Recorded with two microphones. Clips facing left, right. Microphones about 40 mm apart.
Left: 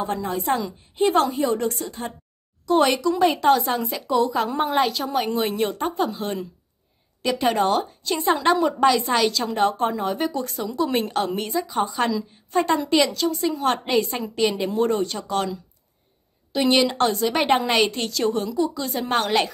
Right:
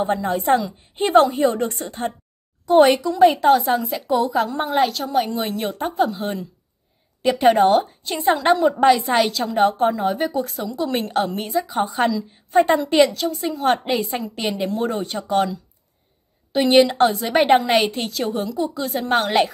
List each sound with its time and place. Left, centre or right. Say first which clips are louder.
0.0 s a woman's voice: right 4 dB; right
2.7 s a woman's voice: right 5 dB; centre
7.2 s a woman's voice: right 6 dB; centre
8.2 s a woman's voice: right 3 dB; centre
16.5 s a woman's voice: right 5 dB; centre